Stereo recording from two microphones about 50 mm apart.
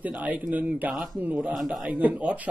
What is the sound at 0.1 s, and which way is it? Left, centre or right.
Speech, right.